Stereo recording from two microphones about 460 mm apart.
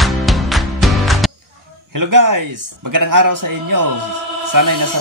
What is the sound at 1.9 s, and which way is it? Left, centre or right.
A man's voice, right.